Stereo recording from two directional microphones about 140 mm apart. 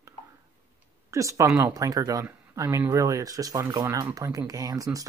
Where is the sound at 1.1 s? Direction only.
20° right (ahead or behind).